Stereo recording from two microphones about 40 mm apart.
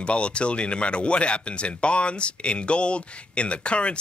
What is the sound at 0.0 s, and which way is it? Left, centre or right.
Speech, left.